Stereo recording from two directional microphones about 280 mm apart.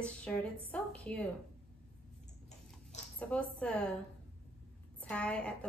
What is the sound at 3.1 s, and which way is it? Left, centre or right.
Speech, centre.